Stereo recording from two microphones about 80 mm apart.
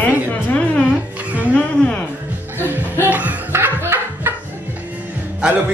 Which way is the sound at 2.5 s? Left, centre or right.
Right.